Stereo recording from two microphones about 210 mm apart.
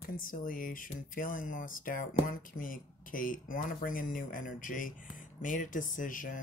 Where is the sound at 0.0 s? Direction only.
40° left (ahead or behind).